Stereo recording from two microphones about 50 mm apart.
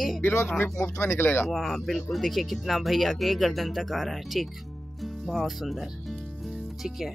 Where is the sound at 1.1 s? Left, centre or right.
Left.